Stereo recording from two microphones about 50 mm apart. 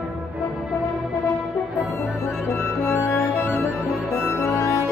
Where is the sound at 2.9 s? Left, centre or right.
Left.